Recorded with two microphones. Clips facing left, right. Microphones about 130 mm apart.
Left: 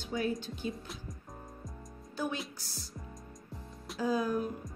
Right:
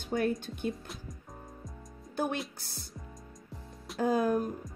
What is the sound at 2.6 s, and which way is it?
Speech, 55° right (ahead or behind).